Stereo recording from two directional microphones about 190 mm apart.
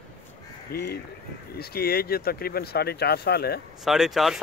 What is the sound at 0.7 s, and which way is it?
Speech, 55° left (ahead or behind).